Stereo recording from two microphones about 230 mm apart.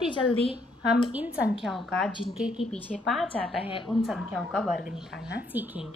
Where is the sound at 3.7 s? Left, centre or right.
Left.